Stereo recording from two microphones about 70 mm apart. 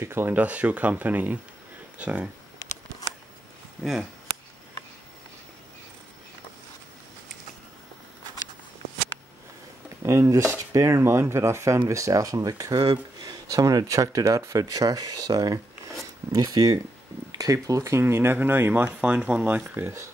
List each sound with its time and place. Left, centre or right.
0.0 s speech: right
0.3 s speech: right
10.0 s speech: right
15.9 s a sound: right
17.3 s speech: right; by 19.6 s centre
19.6 s speech: right